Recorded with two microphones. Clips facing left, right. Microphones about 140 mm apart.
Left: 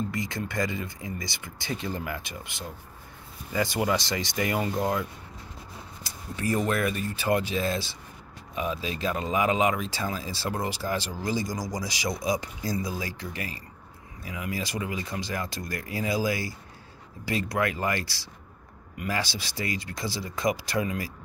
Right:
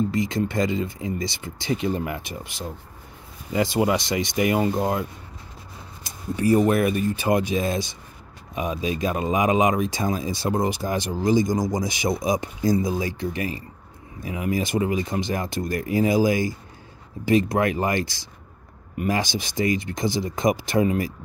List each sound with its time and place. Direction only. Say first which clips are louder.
0.1 s speech: right 8 dB; 20° right (ahead or behind)
3.5 s speech: right 5 dB; 20° right (ahead or behind)
6.0 s speech: right 9 dB; 20° right (ahead or behind)